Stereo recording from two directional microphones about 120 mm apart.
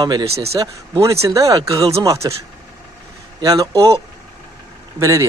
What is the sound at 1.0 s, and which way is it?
Speech, 25° right (ahead or behind).